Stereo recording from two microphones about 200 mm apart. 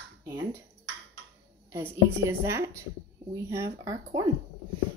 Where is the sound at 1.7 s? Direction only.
15° right (ahead or behind).